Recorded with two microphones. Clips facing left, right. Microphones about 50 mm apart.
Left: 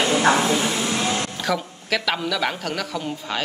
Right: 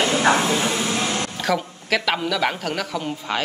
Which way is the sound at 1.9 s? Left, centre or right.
Centre.